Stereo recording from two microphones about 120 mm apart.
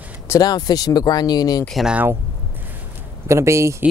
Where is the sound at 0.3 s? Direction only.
35° left (ahead or behind).